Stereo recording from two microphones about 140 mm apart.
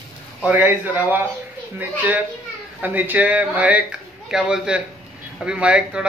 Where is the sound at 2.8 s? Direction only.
15° right (ahead or behind).